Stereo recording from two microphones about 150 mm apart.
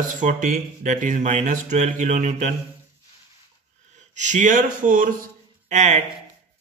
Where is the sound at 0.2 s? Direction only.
60° right (ahead or behind).